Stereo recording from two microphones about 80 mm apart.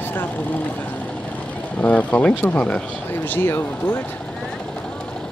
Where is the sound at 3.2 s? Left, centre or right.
Left.